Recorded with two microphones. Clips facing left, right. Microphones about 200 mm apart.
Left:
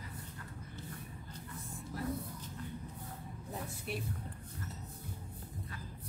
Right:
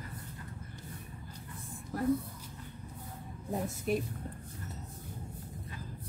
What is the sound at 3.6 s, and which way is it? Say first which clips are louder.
Speech: right 11 dB; 45° right (ahead or behind).